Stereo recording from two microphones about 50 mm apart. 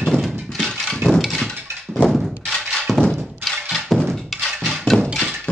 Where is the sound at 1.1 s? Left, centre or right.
Centre.